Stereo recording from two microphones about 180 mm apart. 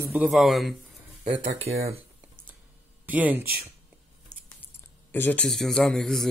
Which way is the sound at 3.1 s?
10° right (ahead or behind).